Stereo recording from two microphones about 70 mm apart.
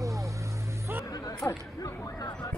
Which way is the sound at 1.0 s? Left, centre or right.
Left.